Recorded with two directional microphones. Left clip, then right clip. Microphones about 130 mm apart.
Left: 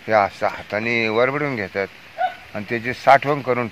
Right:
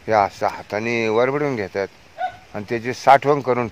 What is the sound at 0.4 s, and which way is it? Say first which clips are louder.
Speech: even; 90° right.